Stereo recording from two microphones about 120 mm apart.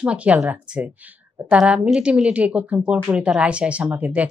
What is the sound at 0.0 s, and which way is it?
Speech, 10° right (ahead or behind).